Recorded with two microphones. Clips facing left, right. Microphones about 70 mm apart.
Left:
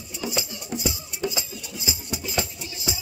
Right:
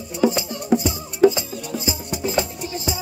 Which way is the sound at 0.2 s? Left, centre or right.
Right.